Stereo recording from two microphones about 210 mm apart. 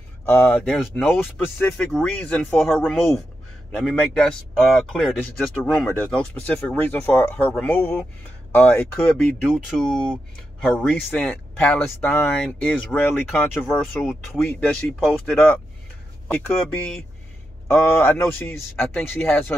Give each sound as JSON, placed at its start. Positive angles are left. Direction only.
{"t": 0.2, "sound": "speech", "side_deg": 5}
{"t": 4.8, "sound": "speech", "side_deg": 5}